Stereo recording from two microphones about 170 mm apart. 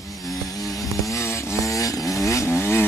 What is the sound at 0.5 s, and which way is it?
Chainsaw, 20° left (ahead or behind).